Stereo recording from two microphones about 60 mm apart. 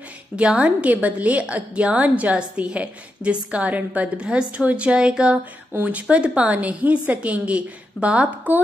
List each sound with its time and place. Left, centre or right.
0.6 s a woman's voice: right